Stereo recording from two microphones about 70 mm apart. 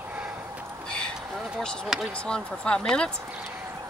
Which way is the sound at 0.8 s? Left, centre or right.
Centre.